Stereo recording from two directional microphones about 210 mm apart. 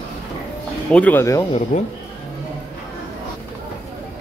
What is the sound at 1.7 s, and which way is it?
Speech, 35° left (ahead or behind).